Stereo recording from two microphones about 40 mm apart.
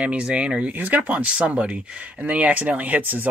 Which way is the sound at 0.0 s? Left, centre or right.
Right.